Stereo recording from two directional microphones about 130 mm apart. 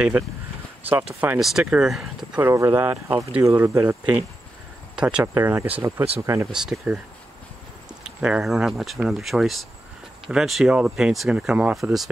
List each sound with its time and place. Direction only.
1.4 s speech: 5° right (ahead or behind)
2.4 s speech: 20° right (ahead or behind)
5.2 s speech: 20° right (ahead or behind)
6.5 s speech: 5° right (ahead or behind)
8.0 s speech: 5° right (ahead or behind)